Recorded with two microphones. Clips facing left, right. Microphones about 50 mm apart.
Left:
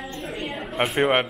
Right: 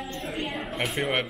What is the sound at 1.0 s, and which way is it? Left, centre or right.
Speech, left.